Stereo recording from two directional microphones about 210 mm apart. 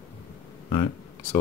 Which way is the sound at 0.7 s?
25° left (ahead or behind).